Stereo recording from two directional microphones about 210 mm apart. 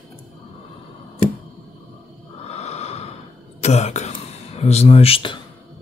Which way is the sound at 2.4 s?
30° left (ahead or behind).